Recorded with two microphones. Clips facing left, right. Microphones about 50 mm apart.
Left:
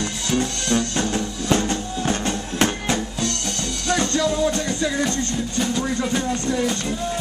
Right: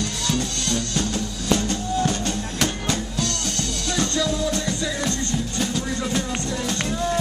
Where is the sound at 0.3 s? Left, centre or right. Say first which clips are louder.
Left 5 dB; left.